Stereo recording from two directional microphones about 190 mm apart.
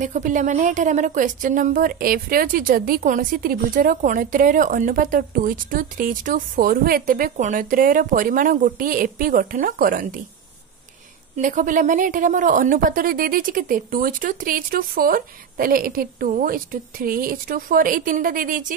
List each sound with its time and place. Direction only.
0.0 s a woman's voice: 40° right (ahead or behind)
11.3 s a woman's voice: 45° right (ahead or behind)